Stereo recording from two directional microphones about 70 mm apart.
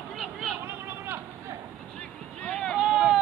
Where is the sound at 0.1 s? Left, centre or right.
Centre.